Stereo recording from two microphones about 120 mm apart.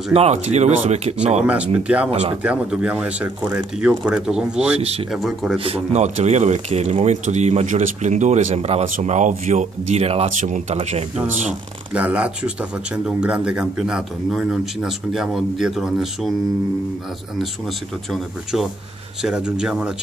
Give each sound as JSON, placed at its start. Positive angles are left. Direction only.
{"t": 0.1, "sound": "speech", "side_deg": -65}
{"t": 1.4, "sound": "speech", "side_deg": -10}
{"t": 2.0, "sound": "speech", "side_deg": -60}
{"t": 2.4, "sound": "speech", "side_deg": -10}
{"t": 4.7, "sound": "speech", "side_deg": -60}
{"t": 5.1, "sound": "speech", "side_deg": 0}
{"t": 5.6, "sound": "speech", "side_deg": -55}
{"t": 6.0, "sound": "speech", "side_deg": -70}
{"t": 11.9, "sound": "speech", "side_deg": -10}
{"t": 19.2, "sound": "speech", "side_deg": -5}